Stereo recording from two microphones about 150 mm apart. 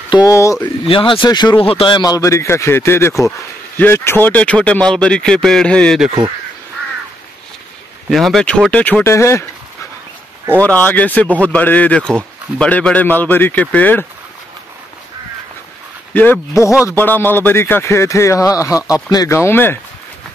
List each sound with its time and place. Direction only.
0.1 s speech: 25° left (ahead or behind)
0.8 s speech: 35° left (ahead or behind); by 6.1 s centre (ahead or behind)
8.1 s speech: centre (ahead or behind); by 9.5 s 20° left (ahead or behind)
10.7 s speech: 10° left (ahead or behind)
16.1 s speech: 10° left (ahead or behind)